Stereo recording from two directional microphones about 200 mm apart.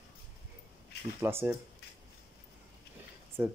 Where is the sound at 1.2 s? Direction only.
10° right (ahead or behind).